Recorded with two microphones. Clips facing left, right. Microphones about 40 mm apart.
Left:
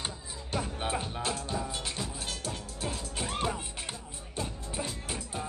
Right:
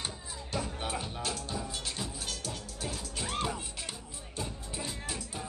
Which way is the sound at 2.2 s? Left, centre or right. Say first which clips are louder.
Left 2 dB; left.